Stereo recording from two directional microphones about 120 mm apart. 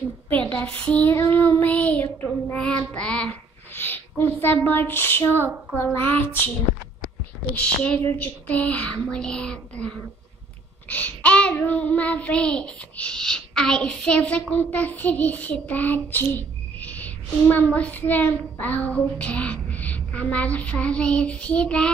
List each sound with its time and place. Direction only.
0.3 s child singing: 10° left (ahead or behind)
2.9 s speech: 10° left (ahead or behind)
5.3 s speech: 20° right (ahead or behind)
5.9 s child singing: 15° left (ahead or behind)